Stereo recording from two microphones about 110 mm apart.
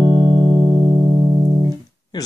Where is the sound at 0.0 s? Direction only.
30° right (ahead or behind).